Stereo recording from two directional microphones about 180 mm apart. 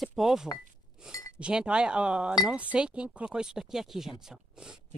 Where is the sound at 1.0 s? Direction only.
5° right (ahead or behind).